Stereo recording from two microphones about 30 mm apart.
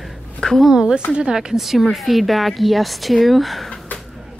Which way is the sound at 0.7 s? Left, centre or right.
Right.